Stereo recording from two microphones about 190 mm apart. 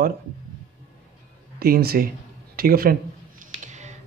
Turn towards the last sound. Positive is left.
turn(degrees=-40)  # may be behind; listen again after turning